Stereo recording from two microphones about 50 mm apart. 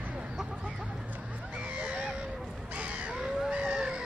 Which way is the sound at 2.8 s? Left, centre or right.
Right.